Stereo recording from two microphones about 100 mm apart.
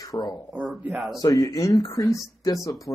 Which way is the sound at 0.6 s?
Centre (ahead or behind).